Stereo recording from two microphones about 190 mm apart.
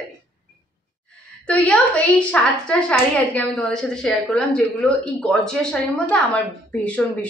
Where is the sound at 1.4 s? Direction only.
5° left (ahead or behind).